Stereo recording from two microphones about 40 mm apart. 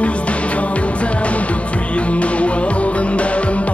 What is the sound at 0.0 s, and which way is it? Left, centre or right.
Music, left.